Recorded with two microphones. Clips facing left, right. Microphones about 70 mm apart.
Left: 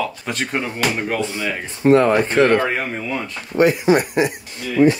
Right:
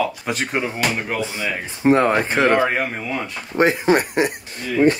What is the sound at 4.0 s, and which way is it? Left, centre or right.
Speech, right.